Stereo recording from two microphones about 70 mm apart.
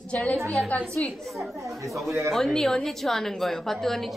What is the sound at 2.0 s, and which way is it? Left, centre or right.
Speech, right.